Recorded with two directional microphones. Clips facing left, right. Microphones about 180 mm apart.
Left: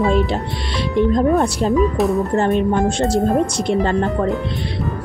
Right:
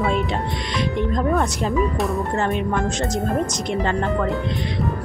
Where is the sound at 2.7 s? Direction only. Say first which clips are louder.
Left 6 dB; 30° left (ahead or behind).